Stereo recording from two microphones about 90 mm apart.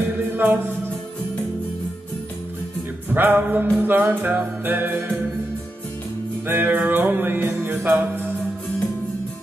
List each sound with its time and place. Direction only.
0.3 s music: 20° right (ahead or behind)
3.1 s music: 20° right (ahead or behind)
6.4 s music: 20° right (ahead or behind)